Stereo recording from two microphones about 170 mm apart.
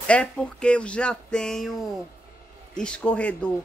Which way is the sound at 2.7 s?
5° left (ahead or behind).